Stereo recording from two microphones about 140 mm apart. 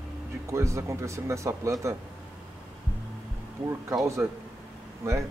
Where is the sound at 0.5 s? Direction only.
20° right (ahead or behind).